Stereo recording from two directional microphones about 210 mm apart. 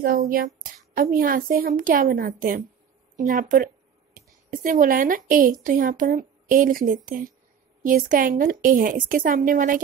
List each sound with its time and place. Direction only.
0.6 s a woman's voice: 40° right (ahead or behind)